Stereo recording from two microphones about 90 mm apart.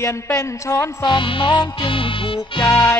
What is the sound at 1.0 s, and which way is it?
Music, 60° left (ahead or behind).